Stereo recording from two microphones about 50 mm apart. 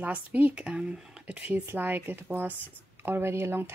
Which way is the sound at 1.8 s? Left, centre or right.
Right.